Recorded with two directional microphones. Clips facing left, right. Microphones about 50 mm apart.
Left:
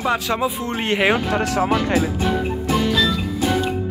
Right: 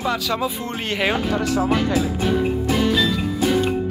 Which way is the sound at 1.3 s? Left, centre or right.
Left.